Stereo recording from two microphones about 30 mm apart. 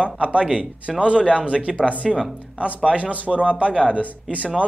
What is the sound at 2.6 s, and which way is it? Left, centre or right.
Speech, right.